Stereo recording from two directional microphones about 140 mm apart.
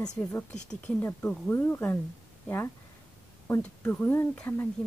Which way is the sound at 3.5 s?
15° left (ahead or behind).